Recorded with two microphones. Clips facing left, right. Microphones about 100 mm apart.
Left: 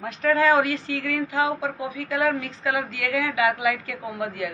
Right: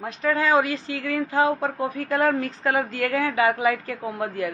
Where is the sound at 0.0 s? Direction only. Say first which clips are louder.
Left 3 dB; 20° right (ahead or behind).